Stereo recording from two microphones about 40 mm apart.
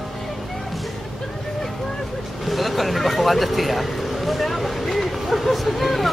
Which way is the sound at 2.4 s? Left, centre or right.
Centre.